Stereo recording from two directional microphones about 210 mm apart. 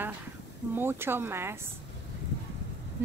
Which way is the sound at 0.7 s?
10° right (ahead or behind).